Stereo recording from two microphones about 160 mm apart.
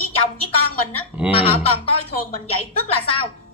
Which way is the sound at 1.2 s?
35° left (ahead or behind).